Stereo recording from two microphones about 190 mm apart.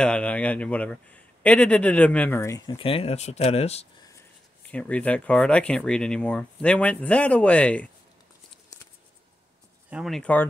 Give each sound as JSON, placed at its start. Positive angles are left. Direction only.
{"t": 0.0, "sound": "speech", "side_deg": 5}
{"t": 4.6, "sound": "speech", "side_deg": 5}
{"t": 9.8, "sound": "speech", "side_deg": 0}